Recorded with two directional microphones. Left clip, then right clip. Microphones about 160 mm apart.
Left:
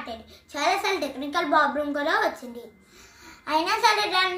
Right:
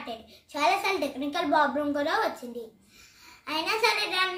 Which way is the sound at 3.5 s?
10° right (ahead or behind).